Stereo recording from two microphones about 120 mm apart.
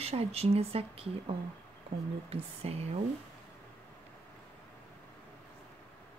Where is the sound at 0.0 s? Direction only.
60° right (ahead or behind).